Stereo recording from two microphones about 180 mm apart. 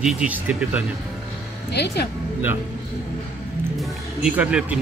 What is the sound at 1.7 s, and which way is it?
Speech, 65° left (ahead or behind).